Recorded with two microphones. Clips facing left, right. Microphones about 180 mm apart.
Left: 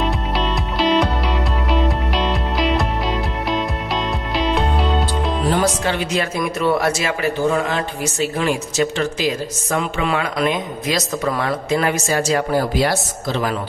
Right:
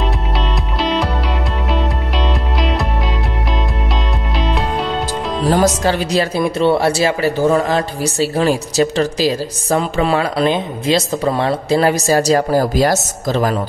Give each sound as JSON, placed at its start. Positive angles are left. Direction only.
{"t": 0.7, "sound": "music", "side_deg": 0}
{"t": 4.4, "sound": "music", "side_deg": 0}
{"t": 5.5, "sound": "speech", "side_deg": -40}